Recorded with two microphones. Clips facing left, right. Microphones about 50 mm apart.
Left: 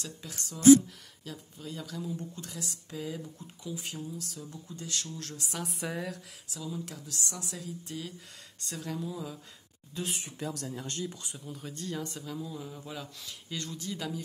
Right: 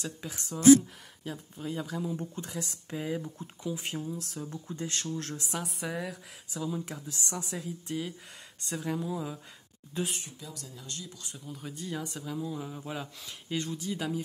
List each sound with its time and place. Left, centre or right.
0.3 s speech: right
5.6 s speech: centre
6.6 s speech: right
9.9 s speech: right
10.4 s speech: left
11.3 s speech: centre